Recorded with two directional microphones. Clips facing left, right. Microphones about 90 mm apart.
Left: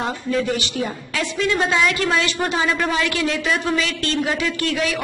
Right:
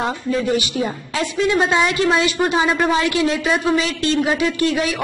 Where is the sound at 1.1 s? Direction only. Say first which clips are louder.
Right 3 dB; 20° right (ahead or behind).